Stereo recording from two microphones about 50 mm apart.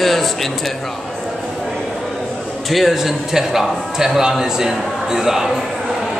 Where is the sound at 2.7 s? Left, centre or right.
Centre.